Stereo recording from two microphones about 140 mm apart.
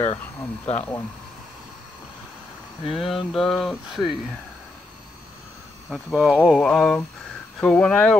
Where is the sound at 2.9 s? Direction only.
Centre (ahead or behind).